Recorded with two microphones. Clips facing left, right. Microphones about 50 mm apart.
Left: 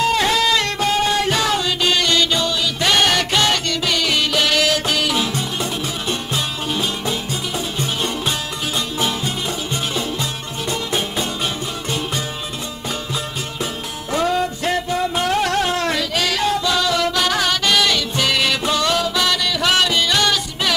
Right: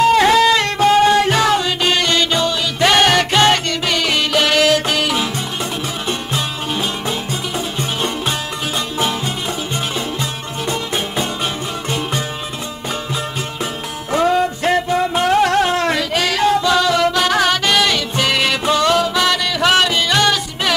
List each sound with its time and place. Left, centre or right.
0.1 s music: right
10.7 s music: right
14.1 s music: right